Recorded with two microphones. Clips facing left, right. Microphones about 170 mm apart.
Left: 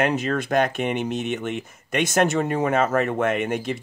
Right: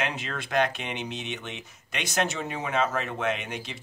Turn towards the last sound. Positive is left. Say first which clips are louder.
# left 7 dB
turn(degrees=50)  # may be behind; listen again after turning